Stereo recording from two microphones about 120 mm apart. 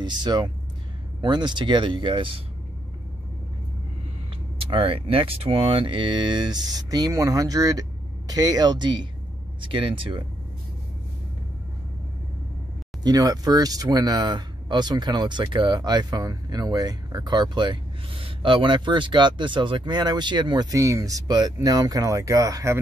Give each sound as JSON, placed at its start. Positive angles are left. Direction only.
{"t": 0.0, "sound": "speech", "side_deg": -40}
{"t": 4.6, "sound": "speech", "side_deg": -50}
{"t": 13.0, "sound": "speech", "side_deg": -30}
{"t": 20.7, "sound": "speech", "side_deg": -25}